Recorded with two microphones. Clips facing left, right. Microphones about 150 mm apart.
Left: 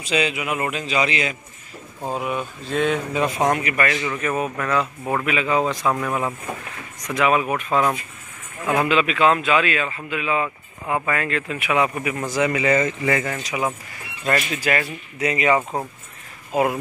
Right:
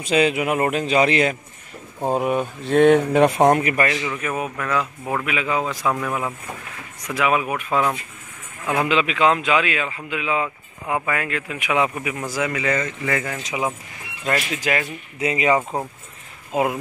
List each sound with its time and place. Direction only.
0.0 s a man's voice: 50° right (ahead or behind)
2.6 s speech: 60° right (ahead or behind)
3.4 s a man's voice: 40° right (ahead or behind)
4.0 s speech: 5° right (ahead or behind)
7.0 s a man's voice: 10° right (ahead or behind)
8.7 s a man's voice: 20° right (ahead or behind); by 13.4 s 5° left (ahead or behind)
14.2 s a man's voice: 10° right (ahead or behind)
15.1 s speech: 25° right (ahead or behind)